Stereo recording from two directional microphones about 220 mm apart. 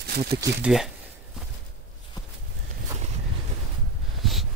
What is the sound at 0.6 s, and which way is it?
Speech, centre (ahead or behind).